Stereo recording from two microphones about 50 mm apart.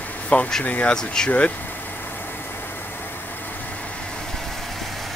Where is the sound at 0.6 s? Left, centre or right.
Left.